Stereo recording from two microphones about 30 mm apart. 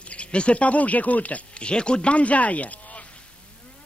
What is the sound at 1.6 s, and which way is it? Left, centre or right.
Speech, left.